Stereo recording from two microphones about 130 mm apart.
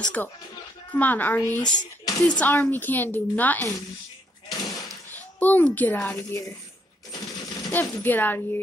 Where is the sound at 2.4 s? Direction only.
15° left (ahead or behind).